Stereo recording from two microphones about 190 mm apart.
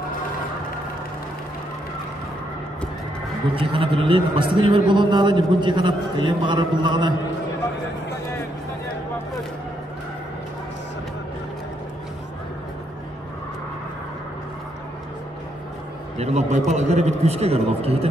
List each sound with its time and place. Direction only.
3.5 s a man's voice: 30° right (ahead or behind)
16.2 s a man's voice: 35° right (ahead or behind)